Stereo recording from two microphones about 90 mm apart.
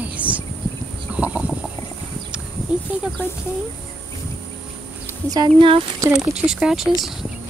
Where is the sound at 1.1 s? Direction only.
15° right (ahead or behind).